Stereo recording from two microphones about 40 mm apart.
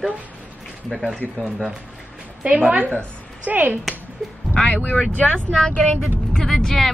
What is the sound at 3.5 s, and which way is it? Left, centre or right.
Speech, right.